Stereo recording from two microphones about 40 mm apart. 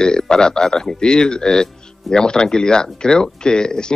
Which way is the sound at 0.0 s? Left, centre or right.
Centre.